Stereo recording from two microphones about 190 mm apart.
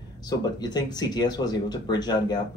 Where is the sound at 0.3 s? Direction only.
20° left (ahead or behind).